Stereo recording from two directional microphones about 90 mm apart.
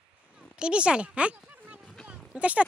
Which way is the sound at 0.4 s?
10° right (ahead or behind).